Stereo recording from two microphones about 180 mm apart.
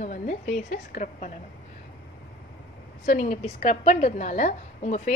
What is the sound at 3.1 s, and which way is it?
A woman's voice, 45° left (ahead or behind).